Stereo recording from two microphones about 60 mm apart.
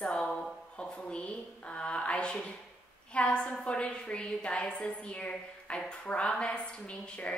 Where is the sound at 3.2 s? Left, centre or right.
Centre.